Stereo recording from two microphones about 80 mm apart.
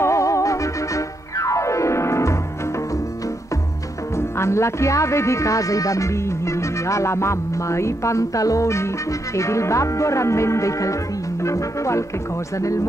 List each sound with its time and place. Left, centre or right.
0.0 s music: left
4.4 s speech: left